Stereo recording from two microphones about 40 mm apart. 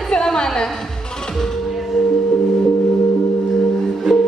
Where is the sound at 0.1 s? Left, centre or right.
Centre.